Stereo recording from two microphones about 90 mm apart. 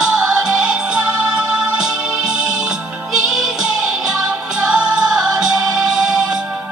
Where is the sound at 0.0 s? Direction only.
10° right (ahead or behind).